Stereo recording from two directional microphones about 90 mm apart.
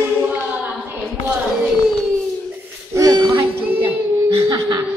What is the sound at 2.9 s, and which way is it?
Music, 50° right (ahead or behind).